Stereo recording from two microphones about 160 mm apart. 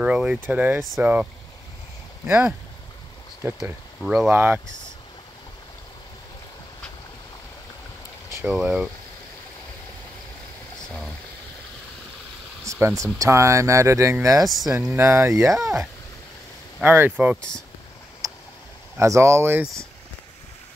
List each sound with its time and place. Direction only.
0.0 s speech: 5° right (ahead or behind)
3.5 s speech: 5° right (ahead or behind)
4.3 s speech: 15° right (ahead or behind)
8.5 s speech: 5° right (ahead or behind)
12.7 s speech: 20° right (ahead or behind)
14.4 s speech: centre (ahead or behind)
15.0 s speech: 15° right (ahead or behind)
16.8 s speech: 10° right (ahead or behind)
18.2 s tick: 20° right (ahead or behind)
18.9 s speech: 20° right (ahead or behind)